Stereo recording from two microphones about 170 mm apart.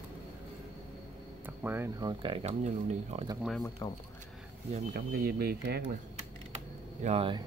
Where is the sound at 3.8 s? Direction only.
25° left (ahead or behind).